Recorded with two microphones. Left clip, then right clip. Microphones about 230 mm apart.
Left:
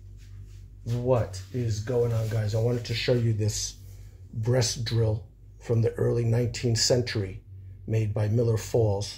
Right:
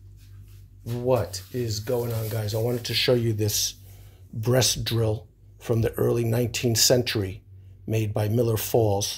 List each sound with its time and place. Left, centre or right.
1.0 s speech: right